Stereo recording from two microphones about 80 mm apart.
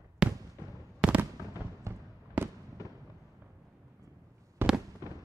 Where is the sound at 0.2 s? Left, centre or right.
Centre.